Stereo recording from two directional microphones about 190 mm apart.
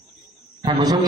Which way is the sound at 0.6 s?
20° right (ahead or behind).